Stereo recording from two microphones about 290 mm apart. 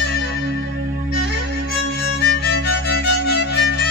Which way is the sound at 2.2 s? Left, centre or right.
Left.